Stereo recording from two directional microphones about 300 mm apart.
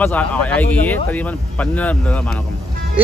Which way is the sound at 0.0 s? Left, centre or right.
Centre.